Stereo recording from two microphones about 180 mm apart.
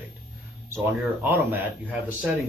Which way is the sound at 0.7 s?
10° right (ahead or behind).